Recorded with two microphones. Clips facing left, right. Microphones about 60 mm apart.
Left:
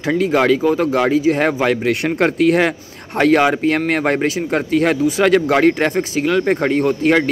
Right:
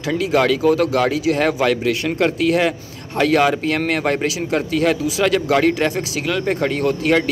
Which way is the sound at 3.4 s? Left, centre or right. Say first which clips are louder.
Left 2 dB; left.